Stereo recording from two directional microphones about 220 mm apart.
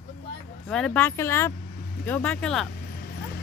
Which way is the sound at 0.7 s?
5° left (ahead or behind).